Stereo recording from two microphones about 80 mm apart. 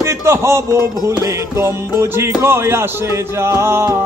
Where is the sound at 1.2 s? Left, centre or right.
Right.